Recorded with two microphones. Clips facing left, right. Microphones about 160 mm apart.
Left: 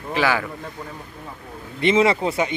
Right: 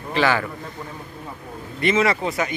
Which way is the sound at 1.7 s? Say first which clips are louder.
Left 2 dB; 25° left (ahead or behind).